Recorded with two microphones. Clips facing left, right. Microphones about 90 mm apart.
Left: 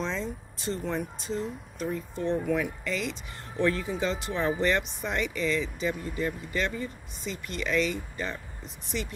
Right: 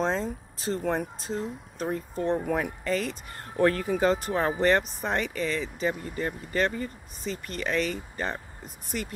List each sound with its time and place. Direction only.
0.0 s vehicle: 40° right (ahead or behind)
0.8 s speech: 40° right (ahead or behind)